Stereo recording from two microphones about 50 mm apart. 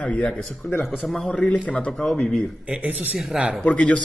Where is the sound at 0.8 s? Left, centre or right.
Centre.